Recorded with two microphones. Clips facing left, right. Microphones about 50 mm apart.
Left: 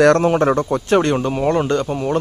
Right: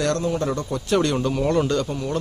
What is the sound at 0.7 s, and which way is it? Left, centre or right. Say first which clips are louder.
Speech: left 5 dB; left.